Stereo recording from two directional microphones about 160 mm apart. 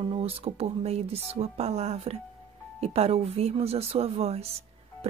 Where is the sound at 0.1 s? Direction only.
35° right (ahead or behind).